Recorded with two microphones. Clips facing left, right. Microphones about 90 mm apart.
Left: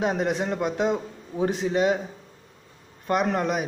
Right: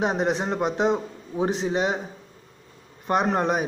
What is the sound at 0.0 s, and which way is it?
A man's voice, 25° right (ahead or behind).